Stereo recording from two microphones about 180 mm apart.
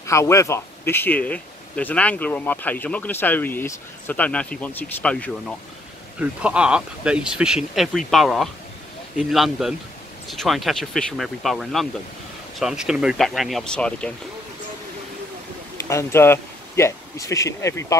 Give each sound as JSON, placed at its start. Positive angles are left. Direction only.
{"t": 0.0, "sound": "speech", "side_deg": 15}
{"t": 6.1, "sound": "speech", "side_deg": -5}
{"t": 15.9, "sound": "speech", "side_deg": 15}